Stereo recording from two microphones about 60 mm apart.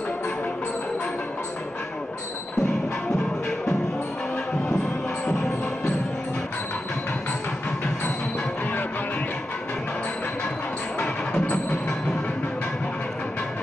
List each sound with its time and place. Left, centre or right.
11.0 s music: left